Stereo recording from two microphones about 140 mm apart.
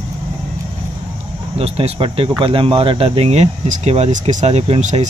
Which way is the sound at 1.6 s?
45° right (ahead or behind).